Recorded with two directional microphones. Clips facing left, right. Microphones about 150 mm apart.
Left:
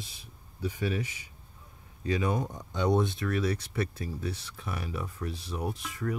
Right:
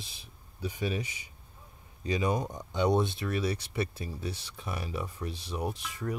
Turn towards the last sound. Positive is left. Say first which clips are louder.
# left 1 dB
turn(degrees=-20)  # may be behind; listen again after turning